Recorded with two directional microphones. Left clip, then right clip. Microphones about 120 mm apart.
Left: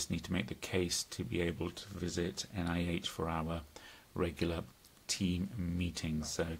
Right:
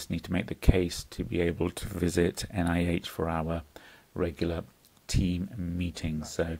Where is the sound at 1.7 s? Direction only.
65° right (ahead or behind); by 6.5 s 30° right (ahead or behind).